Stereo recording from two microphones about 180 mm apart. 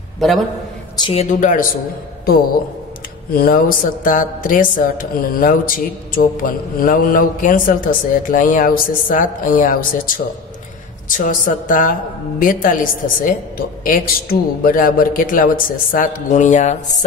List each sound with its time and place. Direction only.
0.2 s a man's voice: centre (ahead or behind)
1.1 s speech: 45° left (ahead or behind)
3.3 s speech: 55° left (ahead or behind)